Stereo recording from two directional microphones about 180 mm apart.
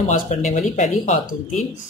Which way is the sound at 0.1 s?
45° left (ahead or behind).